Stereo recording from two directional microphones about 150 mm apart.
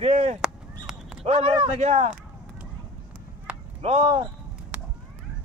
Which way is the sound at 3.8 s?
45° right (ahead or behind).